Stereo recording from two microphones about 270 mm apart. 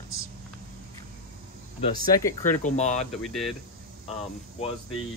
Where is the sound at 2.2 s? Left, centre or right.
Centre.